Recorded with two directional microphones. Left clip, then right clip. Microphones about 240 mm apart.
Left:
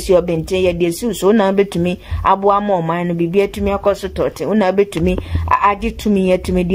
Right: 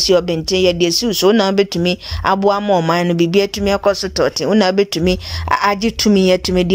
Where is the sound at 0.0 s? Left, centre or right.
Centre.